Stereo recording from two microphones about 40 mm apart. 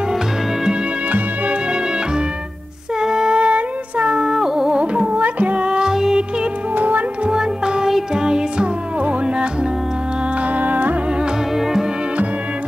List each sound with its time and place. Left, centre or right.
1.1 s music: right
3.0 s music: centre
4.1 s music: centre
4.7 s music: right; by 6.1 s centre
6.7 s music: right
7.2 s music: centre
10.4 s music: right
11.5 s music: centre